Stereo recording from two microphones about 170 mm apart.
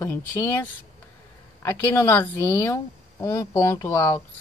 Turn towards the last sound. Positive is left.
turn(degrees=15)  # may be behind; listen again after turning